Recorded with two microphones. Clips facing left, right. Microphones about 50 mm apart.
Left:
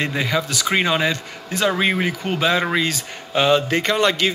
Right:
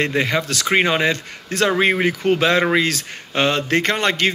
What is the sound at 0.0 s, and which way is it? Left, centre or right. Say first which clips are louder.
Speech: right 2 dB; right.